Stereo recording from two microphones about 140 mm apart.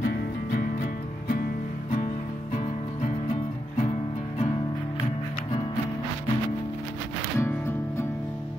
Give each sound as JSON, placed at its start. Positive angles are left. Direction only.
{"t": 7.3, "sound": "music", "side_deg": 20}